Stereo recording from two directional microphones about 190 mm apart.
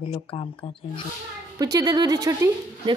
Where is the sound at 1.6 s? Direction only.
20° right (ahead or behind).